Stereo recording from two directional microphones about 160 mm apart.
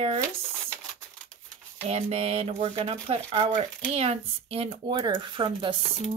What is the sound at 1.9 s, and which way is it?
Speech, 40° right (ahead or behind).